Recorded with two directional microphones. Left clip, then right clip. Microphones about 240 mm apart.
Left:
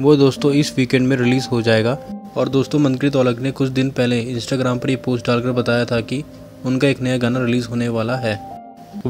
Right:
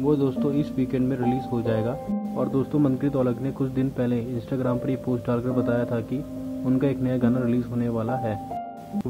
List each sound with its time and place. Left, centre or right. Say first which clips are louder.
0.0 s speech: left 10 dB; left